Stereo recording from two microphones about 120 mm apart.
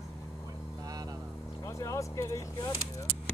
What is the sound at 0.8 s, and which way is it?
Mantra, 30° right (ahead or behind).